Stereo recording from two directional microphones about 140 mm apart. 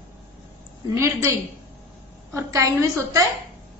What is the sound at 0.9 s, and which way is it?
A woman's voice, 20° right (ahead or behind).